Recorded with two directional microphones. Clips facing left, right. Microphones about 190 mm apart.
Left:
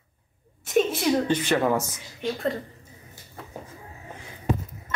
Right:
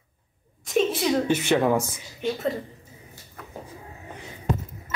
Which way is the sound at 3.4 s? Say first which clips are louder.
Left 1 dB; 25° left (ahead or behind).